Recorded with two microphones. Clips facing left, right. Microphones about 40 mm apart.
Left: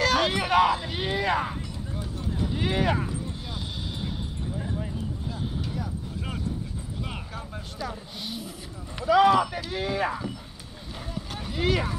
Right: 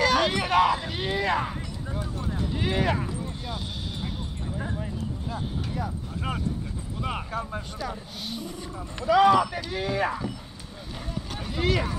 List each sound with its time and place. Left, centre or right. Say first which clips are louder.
0.0 s speech: right 1 dB; centre
2.3 s a sound: left 1 dB; centre
5.3 s vehicle: right 1 dB; right
7.0 s speech: right 8 dB; right
7.8 s speech: right 1 dB; centre